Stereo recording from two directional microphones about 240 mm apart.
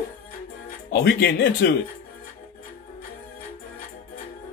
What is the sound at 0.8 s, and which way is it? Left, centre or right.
Speech, left.